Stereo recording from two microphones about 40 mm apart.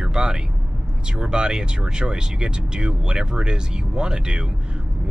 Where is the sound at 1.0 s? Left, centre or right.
Centre.